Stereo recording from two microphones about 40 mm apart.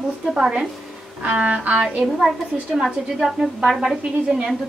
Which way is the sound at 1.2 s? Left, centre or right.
Right.